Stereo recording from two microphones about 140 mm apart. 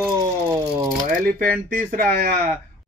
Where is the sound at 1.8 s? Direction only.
85° right.